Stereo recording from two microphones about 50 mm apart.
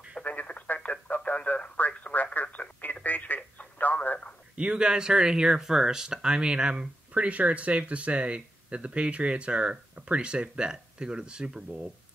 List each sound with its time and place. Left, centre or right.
0.2 s radio: left
3.3 s telephone: left
4.6 s speech: centre